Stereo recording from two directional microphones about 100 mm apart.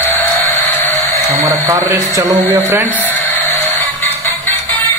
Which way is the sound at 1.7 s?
35° right (ahead or behind).